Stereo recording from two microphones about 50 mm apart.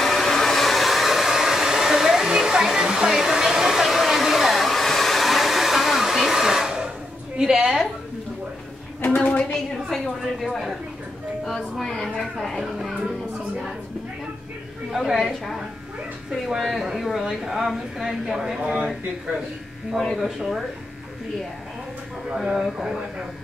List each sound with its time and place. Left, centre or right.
0.0 s hair dryer: centre
7.3 s a sound: centre
9.2 s a sound: left
9.8 s speech: centre
12.6 s a woman's voice: centre
14.9 s speech: centre
16.3 s a woman's voice: centre
18.7 s speech: centre
20.0 s speech: centre
22.4 s a woman's voice: centre